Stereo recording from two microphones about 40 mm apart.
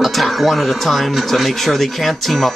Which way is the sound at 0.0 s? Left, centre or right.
Centre.